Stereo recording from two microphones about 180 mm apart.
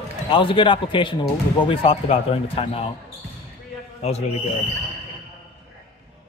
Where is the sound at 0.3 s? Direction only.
30° left (ahead or behind).